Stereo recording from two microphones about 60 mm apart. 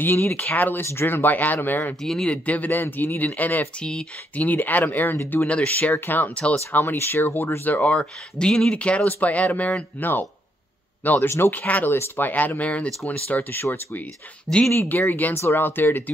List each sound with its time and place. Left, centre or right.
0.0 s speech: left
0.8 s speech: left
2.0 s speech: centre
2.3 s speech: left
2.8 s speech: left
3.3 s speech: left
3.8 s speech: centre
4.5 s speech: left
11.5 s speech: left
14.5 s speech: left
14.9 s speech: left